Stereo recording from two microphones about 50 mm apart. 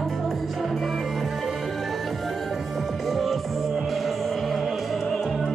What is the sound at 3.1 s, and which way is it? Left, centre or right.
Music, centre.